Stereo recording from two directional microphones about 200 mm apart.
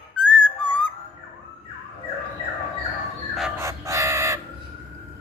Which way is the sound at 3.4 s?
10° right (ahead or behind).